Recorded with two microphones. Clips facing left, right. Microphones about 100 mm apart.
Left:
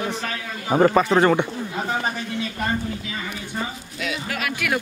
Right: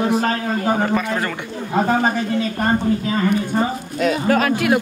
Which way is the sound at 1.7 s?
50° right (ahead or behind).